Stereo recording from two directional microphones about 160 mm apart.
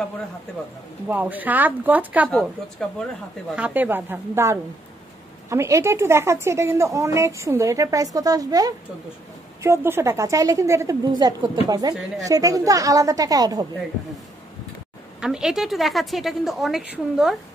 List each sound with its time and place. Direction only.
1.0 s speech: 10° right (ahead or behind)
2.2 s a woman's voice: 5° left (ahead or behind)
3.5 s a woman's voice: 10° right (ahead or behind)
15.1 s a woman's voice: 5° right (ahead or behind)